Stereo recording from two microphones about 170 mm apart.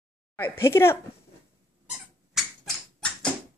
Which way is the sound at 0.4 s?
15° left (ahead or behind).